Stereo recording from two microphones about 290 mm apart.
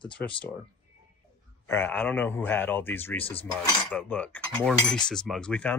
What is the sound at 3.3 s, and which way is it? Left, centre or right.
Cutlery, centre.